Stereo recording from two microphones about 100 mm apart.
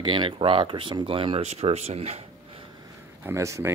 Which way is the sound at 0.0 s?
50° right (ahead or behind).